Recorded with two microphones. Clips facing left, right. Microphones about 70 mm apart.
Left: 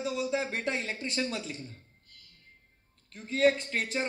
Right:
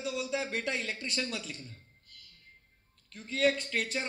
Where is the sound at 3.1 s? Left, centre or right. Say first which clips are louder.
Left 3 dB; left.